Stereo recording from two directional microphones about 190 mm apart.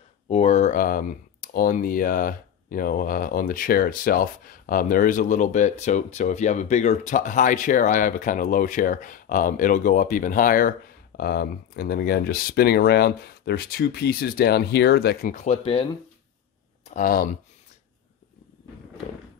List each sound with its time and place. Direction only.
0.3 s speech: 35° left (ahead or behind); by 15.3 s 55° left (ahead or behind)
15.3 s speech: 35° left (ahead or behind)
16.9 s speech: 50° left (ahead or behind)